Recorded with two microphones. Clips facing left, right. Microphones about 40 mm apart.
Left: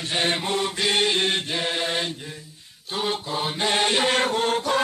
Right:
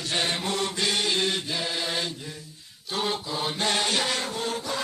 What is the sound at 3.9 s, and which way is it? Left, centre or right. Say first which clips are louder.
Chant: left 5 dB; left.